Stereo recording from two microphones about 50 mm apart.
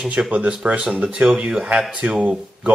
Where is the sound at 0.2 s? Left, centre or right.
Right.